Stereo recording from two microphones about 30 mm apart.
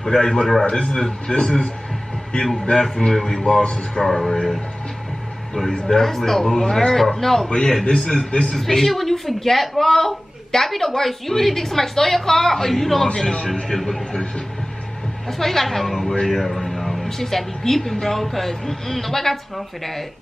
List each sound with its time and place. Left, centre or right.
0.0 s a man's voice: centre
0.7 s a man's voice: left
3.1 s speech: centre
3.6 s a man's voice: left
4.0 s speech: centre
4.3 s a man's voice: left
7.4 s a man's voice: left
8.5 s a man's voice: centre
15.2 s speech: centre
16.4 s a sound: centre
17.0 s speech: centre